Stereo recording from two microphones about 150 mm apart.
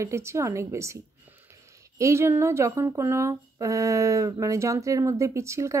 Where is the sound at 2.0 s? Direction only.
20° right (ahead or behind).